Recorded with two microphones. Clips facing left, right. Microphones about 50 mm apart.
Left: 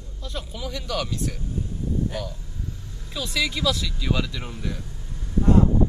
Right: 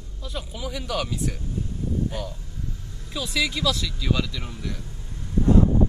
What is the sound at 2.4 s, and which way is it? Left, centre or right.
Speech, centre.